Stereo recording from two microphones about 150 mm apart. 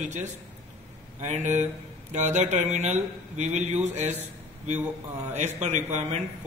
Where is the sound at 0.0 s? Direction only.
55° right (ahead or behind).